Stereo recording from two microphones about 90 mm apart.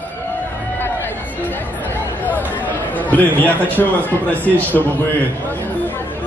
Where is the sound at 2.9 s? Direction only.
20° left (ahead or behind).